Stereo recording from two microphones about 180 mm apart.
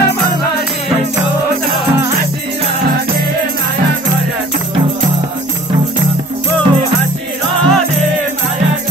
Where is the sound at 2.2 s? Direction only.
45° right (ahead or behind).